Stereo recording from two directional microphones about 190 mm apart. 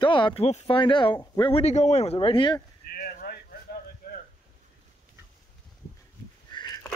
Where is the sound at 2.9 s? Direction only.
50° left (ahead or behind).